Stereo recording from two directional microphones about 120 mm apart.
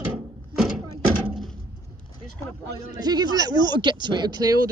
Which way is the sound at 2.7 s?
35° right (ahead or behind).